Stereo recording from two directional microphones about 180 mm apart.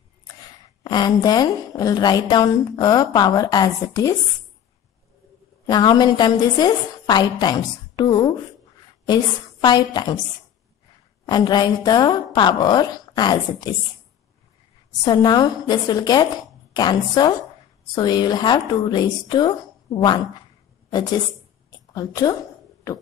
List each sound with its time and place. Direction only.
0.8 s a woman's voice: 25° left (ahead or behind)
5.7 s a woman's voice: 25° left (ahead or behind)
11.2 s a woman's voice: 25° left (ahead or behind)
15.0 s a woman's voice: 20° left (ahead or behind)
21.6 s a sound: 20° left (ahead or behind)